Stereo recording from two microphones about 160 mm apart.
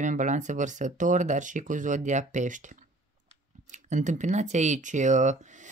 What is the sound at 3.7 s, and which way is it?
Speech, 50° right (ahead or behind).